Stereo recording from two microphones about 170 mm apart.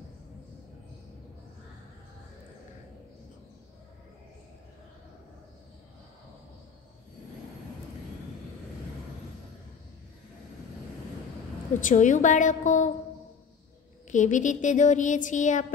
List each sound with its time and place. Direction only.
11.8 s a woman's voice: 50° left (ahead or behind)
14.1 s a woman's voice: 45° left (ahead or behind)